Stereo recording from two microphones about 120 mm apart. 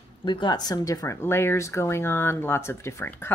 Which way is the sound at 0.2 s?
40° left (ahead or behind).